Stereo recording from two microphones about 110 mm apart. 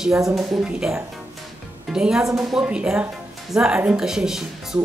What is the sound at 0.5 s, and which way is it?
A woman's voice, 5° right (ahead or behind).